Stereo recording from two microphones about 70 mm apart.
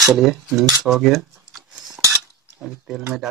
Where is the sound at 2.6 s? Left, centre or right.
Centre.